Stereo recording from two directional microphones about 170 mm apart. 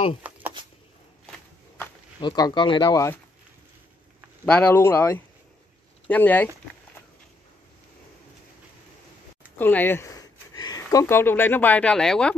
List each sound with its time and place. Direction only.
0.2 s a sound: 10° right (ahead or behind)
2.1 s speech: 25° left (ahead or behind)
4.5 s speech: 10° left (ahead or behind)
9.6 s speech: 10° left (ahead or behind)